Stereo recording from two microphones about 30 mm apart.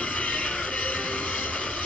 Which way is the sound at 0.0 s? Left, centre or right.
Left.